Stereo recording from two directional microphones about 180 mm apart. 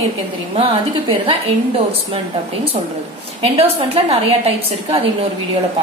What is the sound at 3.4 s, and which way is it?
A woman's voice, 35° right (ahead or behind).